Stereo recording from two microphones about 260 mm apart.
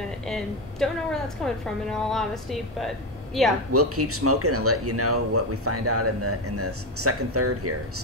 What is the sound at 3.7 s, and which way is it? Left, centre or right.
Speech, right.